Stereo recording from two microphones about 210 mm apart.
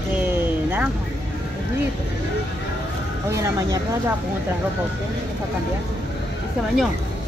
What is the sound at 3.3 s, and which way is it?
Speech, 15° right (ahead or behind).